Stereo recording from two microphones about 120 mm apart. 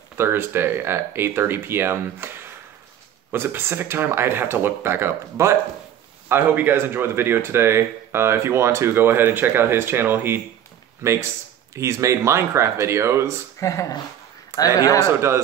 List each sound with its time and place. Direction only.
0.2 s speech: 20° right (ahead or behind)
13.6 s a man's voice: 25° left (ahead or behind)
15.1 s speech: 20° right (ahead or behind)